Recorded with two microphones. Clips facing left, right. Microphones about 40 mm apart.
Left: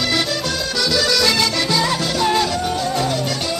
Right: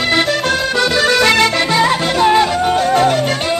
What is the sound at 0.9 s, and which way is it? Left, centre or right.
Music, right.